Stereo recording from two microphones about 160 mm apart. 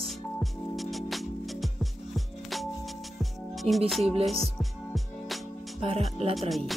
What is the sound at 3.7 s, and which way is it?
Speech, 40° right (ahead or behind).